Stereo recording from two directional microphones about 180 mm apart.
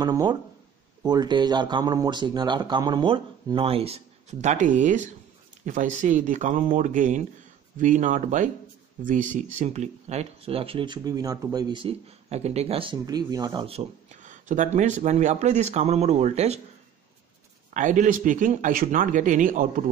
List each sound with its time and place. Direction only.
0.0 s speech: 20° right (ahead or behind)
17.7 s speech: 45° right (ahead or behind)